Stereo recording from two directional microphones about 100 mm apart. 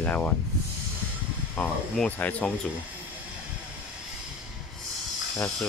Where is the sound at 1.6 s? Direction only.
10° left (ahead or behind).